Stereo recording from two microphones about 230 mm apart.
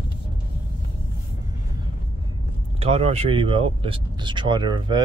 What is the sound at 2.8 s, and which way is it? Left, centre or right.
Speech, right.